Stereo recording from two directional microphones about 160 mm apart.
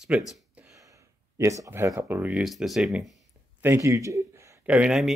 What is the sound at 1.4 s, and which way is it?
Speech, 20° right (ahead or behind).